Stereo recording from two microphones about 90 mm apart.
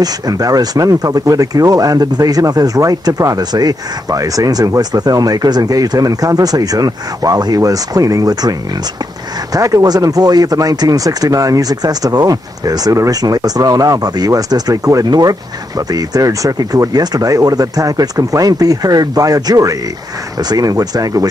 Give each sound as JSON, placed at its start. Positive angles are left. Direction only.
{"t": 0.0, "sound": "speech", "side_deg": -45}